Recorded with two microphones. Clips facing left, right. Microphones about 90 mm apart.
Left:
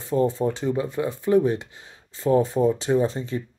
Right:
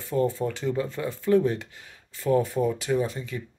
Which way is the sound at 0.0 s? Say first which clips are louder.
Left 3 dB; 20° left (ahead or behind).